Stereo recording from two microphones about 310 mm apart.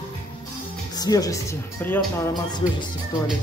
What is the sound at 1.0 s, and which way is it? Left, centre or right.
Speech, centre.